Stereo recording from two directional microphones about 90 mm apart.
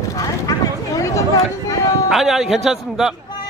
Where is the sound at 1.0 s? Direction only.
40° left (ahead or behind).